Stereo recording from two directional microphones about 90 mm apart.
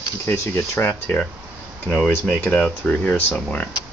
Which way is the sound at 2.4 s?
15° left (ahead or behind).